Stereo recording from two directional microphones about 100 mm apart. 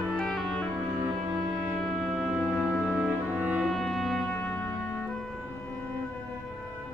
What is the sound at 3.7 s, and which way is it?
Music, 5° left (ahead or behind).